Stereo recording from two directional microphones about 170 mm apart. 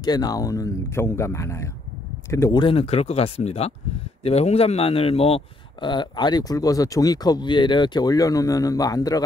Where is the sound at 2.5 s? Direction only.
30° left (ahead or behind).